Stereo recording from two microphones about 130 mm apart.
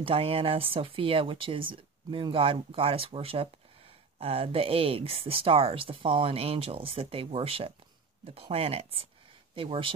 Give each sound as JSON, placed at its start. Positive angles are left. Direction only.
{"t": 0.0, "sound": "speech", "side_deg": -45}